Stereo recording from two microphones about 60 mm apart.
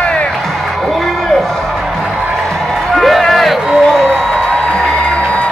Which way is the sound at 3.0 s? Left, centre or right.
Centre.